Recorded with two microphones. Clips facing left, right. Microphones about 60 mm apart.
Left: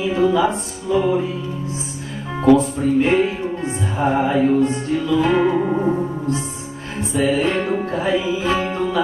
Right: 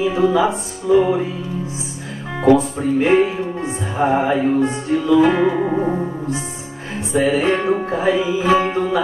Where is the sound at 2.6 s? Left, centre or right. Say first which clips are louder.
Left 1 dB; right.